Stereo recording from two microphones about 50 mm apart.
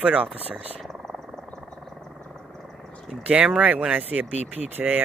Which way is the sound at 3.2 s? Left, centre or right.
Right.